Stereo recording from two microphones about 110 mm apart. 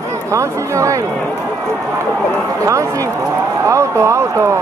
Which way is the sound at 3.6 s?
30° right (ahead or behind).